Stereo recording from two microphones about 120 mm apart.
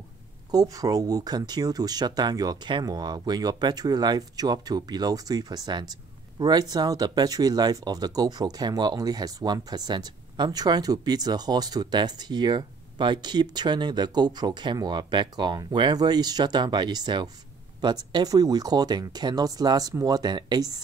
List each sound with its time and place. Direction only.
0.5 s speech: 30° right (ahead or behind)